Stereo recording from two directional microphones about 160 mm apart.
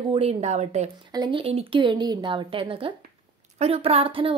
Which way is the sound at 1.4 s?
35° right (ahead or behind).